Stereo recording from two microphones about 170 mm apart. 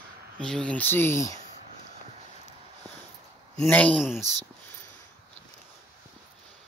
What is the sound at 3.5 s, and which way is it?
Speech, 10° left (ahead or behind).